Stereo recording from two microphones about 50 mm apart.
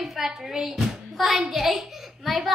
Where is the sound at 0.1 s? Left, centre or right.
Centre.